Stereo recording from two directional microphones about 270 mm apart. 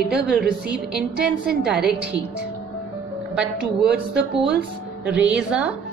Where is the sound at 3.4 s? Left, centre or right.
Centre.